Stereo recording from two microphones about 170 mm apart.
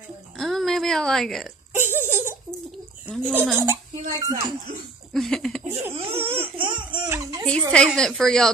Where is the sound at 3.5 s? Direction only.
15° right (ahead or behind).